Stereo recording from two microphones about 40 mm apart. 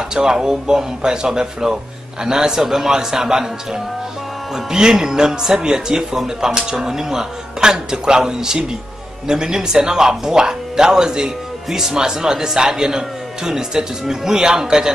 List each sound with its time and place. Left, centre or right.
0.1 s speech: centre